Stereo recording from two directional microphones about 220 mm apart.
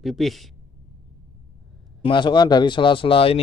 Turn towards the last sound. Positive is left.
turn(degrees=25)  # may be behind; listen again after turning